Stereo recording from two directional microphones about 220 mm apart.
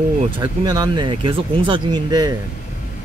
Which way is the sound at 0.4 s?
20° right (ahead or behind).